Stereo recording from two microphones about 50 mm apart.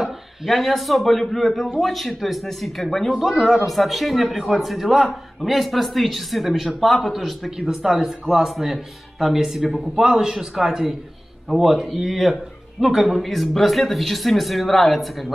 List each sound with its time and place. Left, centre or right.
0.0 s a man's voice: centre
3.1 s a man's voice: centre
7.5 s a man's voice: centre